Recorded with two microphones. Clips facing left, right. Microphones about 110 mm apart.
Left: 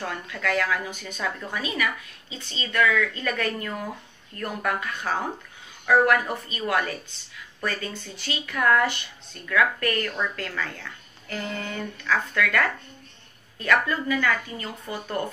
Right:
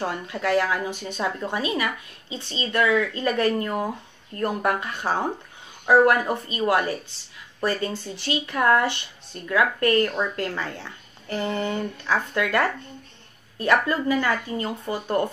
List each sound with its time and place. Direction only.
0.0 s speech: 25° right (ahead or behind)